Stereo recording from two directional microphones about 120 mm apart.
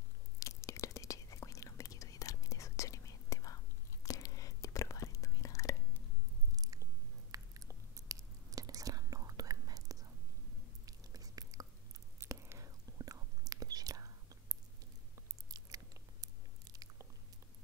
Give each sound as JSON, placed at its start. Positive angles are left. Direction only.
{"t": 0.4, "sound": "whispering", "side_deg": 25}
{"t": 6.5, "sound": "chewing", "side_deg": -30}
{"t": 10.9, "sound": "whispering", "side_deg": -30}
{"t": 15.4, "sound": "biting", "side_deg": -30}